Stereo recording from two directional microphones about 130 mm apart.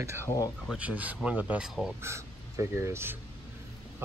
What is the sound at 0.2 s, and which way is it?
Speech, 25° left (ahead or behind).